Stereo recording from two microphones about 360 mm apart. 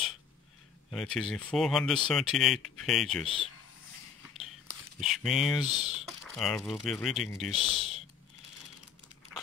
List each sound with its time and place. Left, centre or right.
0.9 s speech: centre
5.0 s speech: centre
5.7 s speech: centre
6.0 s speech: centre